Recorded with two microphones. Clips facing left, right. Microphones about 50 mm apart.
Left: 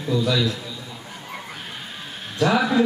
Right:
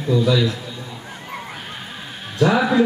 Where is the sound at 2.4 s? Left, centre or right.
Centre.